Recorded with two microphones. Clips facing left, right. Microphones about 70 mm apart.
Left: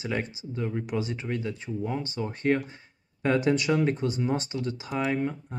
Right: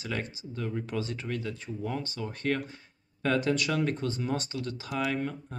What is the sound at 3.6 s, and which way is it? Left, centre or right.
Speech, centre.